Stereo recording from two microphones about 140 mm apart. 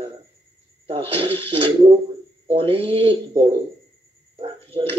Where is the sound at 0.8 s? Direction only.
40° right (ahead or behind).